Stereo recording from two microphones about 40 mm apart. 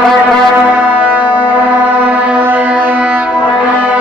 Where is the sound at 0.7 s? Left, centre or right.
Right.